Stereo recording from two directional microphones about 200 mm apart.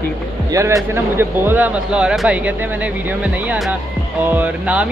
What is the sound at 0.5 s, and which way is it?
Speech, 15° right (ahead or behind).